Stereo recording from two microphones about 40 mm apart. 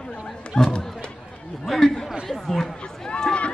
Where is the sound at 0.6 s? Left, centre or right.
Centre.